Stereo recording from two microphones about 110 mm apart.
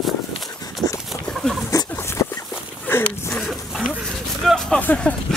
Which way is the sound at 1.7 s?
30° left (ahead or behind).